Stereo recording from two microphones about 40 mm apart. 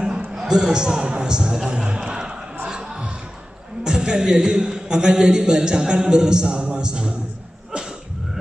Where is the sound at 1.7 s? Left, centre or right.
Right.